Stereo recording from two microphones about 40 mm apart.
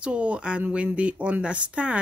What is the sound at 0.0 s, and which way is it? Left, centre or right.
A woman's voice, right.